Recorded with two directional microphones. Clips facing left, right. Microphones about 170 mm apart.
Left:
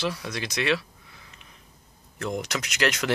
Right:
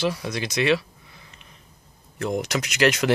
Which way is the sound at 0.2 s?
5° right (ahead or behind).